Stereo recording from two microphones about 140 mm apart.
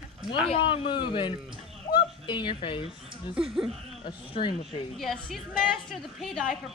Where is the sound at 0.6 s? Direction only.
35° left (ahead or behind).